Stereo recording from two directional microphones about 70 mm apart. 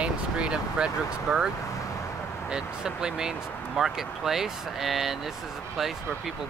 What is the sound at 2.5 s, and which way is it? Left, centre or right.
Speech, centre.